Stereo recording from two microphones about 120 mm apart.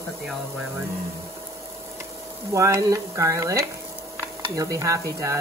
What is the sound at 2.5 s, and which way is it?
Speech, 30° right (ahead or behind).